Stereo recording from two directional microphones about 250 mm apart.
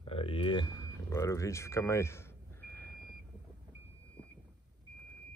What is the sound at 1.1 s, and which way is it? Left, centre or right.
Speech, centre.